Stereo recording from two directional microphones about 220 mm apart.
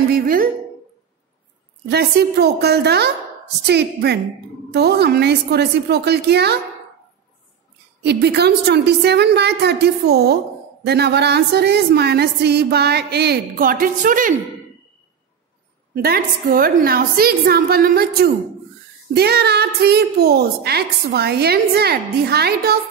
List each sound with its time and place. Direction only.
0.1 s a woman's voice: 40° right (ahead or behind)
1.9 s a woman's voice: 45° right (ahead or behind)
8.0 s a woman's voice: 50° right (ahead or behind)
15.9 s a woman's voice: 45° right (ahead or behind)